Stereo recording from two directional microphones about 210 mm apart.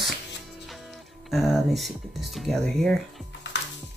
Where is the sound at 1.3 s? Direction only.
Centre (ahead or behind).